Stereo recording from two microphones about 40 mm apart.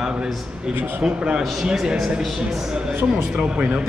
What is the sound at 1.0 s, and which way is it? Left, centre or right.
Speech, right.